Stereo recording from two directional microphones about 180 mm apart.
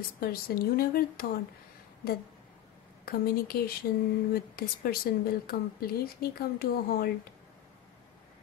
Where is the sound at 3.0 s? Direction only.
55° left (ahead or behind).